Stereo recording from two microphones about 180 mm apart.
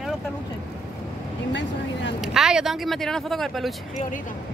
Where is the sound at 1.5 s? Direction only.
90° left.